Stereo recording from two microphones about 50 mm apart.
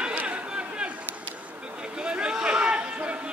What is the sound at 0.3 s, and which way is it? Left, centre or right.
Chatter, right.